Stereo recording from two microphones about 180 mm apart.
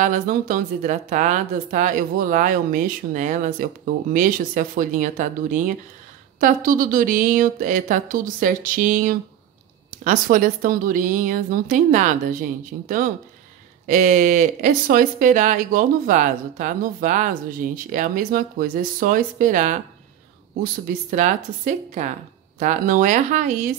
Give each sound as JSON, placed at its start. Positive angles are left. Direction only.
{"t": 0.0, "sound": "speech", "side_deg": -50}